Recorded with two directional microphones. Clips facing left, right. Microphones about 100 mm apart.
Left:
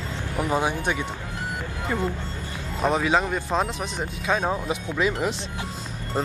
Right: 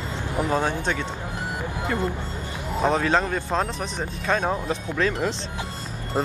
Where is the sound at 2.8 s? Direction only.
Centre (ahead or behind).